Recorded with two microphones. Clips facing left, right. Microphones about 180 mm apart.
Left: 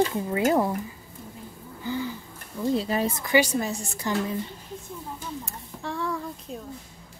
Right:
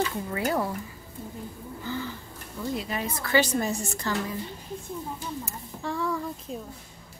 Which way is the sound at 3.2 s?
10° left (ahead or behind).